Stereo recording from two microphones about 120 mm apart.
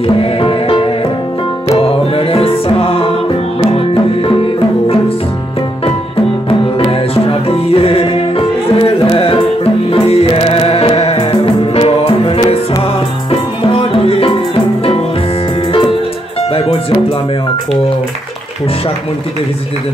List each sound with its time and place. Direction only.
0.0 s music: 50° left (ahead or behind)
6.8 s music: 50° left (ahead or behind)
16.5 s music: 55° left (ahead or behind)